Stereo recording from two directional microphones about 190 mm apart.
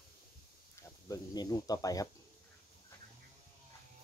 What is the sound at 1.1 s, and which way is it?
Speech, 20° left (ahead or behind).